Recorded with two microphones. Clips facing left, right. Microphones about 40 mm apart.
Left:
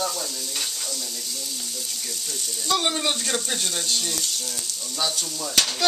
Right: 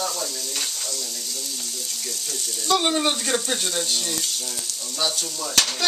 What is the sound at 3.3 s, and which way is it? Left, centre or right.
Speech, centre.